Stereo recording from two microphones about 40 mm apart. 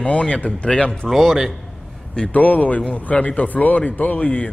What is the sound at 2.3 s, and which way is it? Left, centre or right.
A man's voice, left.